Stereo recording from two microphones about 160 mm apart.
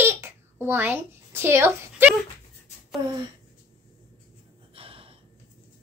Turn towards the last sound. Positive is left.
turn(degrees=-35)  # may be behind; listen again after turning